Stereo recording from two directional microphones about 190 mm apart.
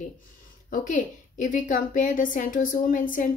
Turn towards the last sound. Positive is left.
turn(degrees=45)  # may be behind; listen again after turning